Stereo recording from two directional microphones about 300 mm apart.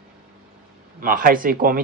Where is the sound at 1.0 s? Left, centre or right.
Right.